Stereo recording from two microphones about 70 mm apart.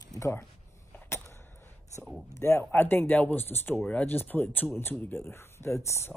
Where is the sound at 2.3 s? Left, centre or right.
Left.